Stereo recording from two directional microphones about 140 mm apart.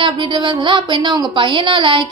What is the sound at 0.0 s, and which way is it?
A woman's voice, 35° right (ahead or behind).